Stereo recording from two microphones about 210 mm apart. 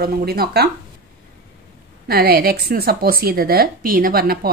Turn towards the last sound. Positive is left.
turn(degrees=-45)  # may be behind; listen again after turning